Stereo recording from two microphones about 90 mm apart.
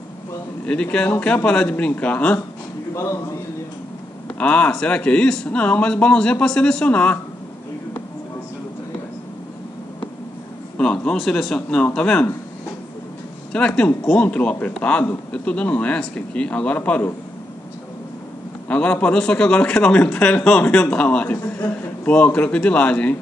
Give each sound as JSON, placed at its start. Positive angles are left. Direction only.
{"t": 0.7, "sound": "speech", "side_deg": 10}
{"t": 2.9, "sound": "a man's voice", "side_deg": 30}
{"t": 4.4, "sound": "speech", "side_deg": 15}
{"t": 10.8, "sound": "speech", "side_deg": 10}
{"t": 13.5, "sound": "speech", "side_deg": 10}
{"t": 18.7, "sound": "speech", "side_deg": 15}